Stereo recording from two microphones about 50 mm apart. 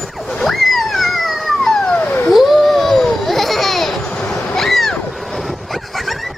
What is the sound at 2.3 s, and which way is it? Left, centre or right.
Babbling, centre.